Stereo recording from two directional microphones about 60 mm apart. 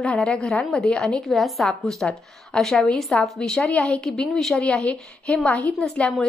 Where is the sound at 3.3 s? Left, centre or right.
Centre.